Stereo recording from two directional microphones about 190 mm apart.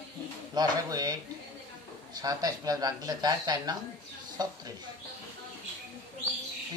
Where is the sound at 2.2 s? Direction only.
20° right (ahead or behind).